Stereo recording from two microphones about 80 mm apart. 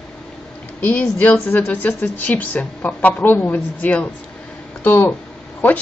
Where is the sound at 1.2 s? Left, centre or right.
Centre.